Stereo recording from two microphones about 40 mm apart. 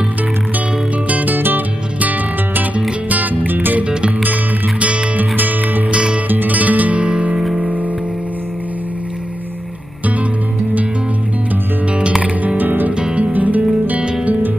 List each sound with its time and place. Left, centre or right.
1.0 s music: right
5.9 s music: right
6.2 s music: right
7.1 s music: right
7.3 s music: centre
12.5 s music: right
12.9 s music: right
13.3 s music: right